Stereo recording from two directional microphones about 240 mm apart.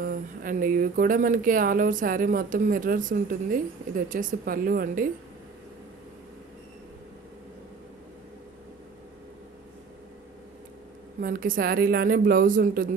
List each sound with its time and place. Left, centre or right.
0.0 s speech: right
11.1 s speech: right